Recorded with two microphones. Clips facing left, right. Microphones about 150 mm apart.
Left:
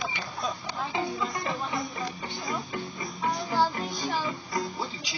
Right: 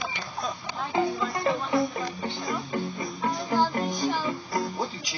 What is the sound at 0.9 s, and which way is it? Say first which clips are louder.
Music: right 6 dB; 50° right (ahead or behind).